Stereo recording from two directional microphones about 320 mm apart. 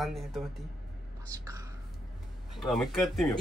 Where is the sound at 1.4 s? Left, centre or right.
Centre.